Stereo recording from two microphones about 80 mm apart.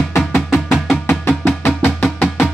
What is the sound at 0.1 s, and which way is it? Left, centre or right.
Music, left.